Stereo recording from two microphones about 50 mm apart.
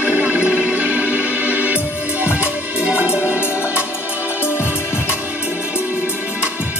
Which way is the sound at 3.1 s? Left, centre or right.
Left.